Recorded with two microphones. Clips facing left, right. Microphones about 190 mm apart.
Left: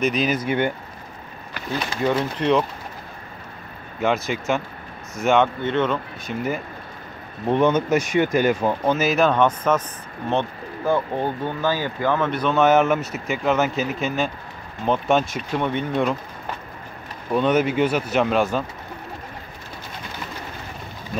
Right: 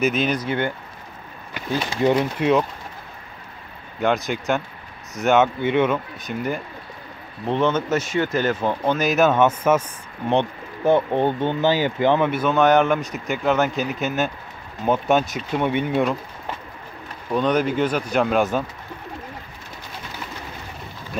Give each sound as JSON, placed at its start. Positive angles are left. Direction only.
{"t": 0.0, "sound": "speech", "side_deg": 0}
{"t": 0.5, "sound": "speech", "side_deg": 15}
{"t": 1.5, "sound": "speech", "side_deg": -15}
{"t": 4.0, "sound": "speech", "side_deg": 0}
{"t": 6.2, "sound": "speech", "side_deg": 5}
{"t": 10.9, "sound": "speech", "side_deg": -25}
{"t": 12.3, "sound": "speech", "side_deg": -5}
{"t": 17.3, "sound": "speech", "side_deg": 5}